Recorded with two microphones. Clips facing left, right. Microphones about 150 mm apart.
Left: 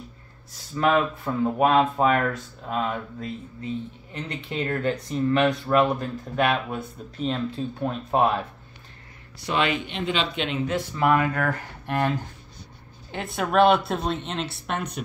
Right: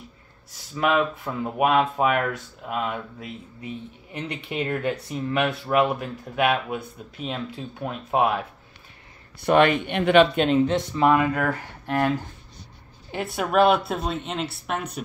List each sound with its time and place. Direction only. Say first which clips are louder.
0.7 s speech: left 1 dB; 5° right (ahead or behind)
9.4 s speech: right 7 dB; 55° right (ahead or behind)
10.7 s speech: right 2 dB; 20° right (ahead or behind)
13.1 s a woman's voice: right 1 dB; 5° right (ahead or behind)